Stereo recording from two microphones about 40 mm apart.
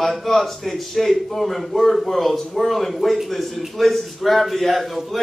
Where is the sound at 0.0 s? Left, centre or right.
Centre.